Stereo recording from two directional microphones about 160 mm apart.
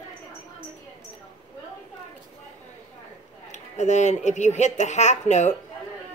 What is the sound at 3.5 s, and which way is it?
Speech, 45° left (ahead or behind).